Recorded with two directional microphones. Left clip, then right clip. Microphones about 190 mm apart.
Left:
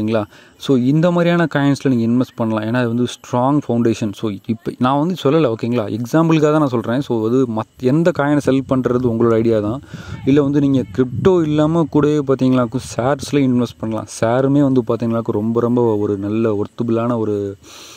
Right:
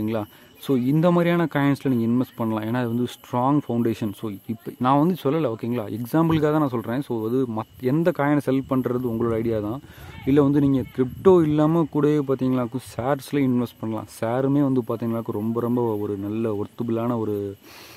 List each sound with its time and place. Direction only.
0.0 s speech: 30° left (ahead or behind)